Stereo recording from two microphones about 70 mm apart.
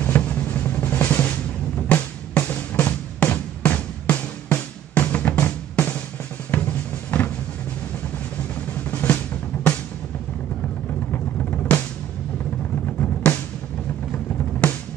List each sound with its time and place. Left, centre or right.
0.0 s drum: left
1.9 s music: left
6.5 s drum: left
8.9 s drum: left
11.1 s vehicle: left
12.8 s drum: left